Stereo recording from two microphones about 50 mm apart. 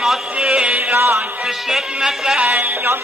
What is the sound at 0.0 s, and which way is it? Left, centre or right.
Music, centre.